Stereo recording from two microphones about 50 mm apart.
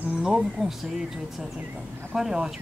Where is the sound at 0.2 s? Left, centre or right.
Centre.